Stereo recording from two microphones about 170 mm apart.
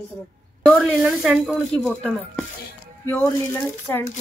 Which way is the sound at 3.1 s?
15° left (ahead or behind).